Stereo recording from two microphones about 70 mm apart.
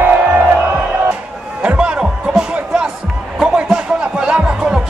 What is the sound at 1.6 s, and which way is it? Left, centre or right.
Music, centre.